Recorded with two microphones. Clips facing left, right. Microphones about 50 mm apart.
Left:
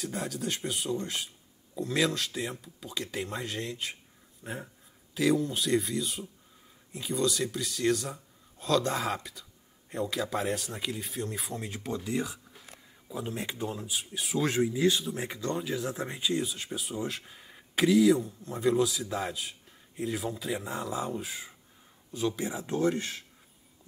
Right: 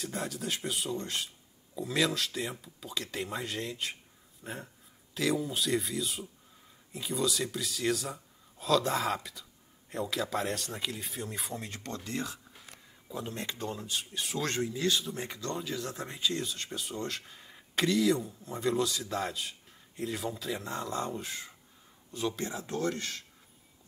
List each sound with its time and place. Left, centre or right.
0.0 s speech: centre
22.6 s speech: left